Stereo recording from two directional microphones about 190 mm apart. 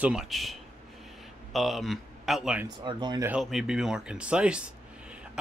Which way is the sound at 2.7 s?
25° right (ahead or behind).